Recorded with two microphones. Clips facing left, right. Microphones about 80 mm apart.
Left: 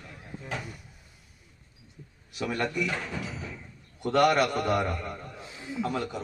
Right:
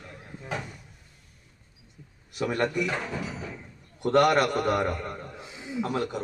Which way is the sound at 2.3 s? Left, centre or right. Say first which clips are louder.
Right 3 dB; right.